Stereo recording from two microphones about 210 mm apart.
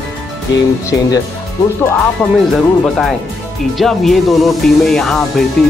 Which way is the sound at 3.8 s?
Centre (ahead or behind).